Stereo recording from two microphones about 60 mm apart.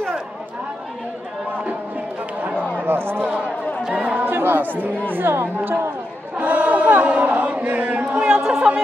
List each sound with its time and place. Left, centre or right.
2.7 s a sound: right
3.9 s chatter: right
4.3 s chatter: right
5.1 s speech: right
6.3 s chant: right
8.1 s a sound: right
8.5 s speech: centre